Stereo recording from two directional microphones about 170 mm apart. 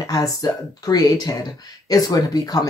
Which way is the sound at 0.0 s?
20° left (ahead or behind).